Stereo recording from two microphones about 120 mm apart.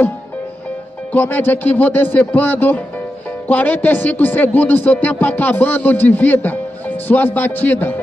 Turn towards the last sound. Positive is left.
turn(degrees=15)  # may be behind; listen again after turning